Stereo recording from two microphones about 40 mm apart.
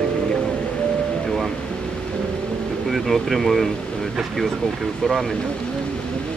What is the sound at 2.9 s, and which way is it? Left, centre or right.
Speech, centre.